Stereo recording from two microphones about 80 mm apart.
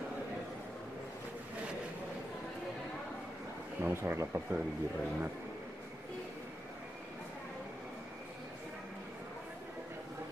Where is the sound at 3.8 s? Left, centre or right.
Right.